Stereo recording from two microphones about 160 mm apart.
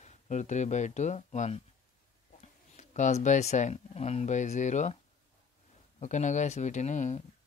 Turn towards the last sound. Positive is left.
turn(degrees=50)  # may be behind; listen again after turning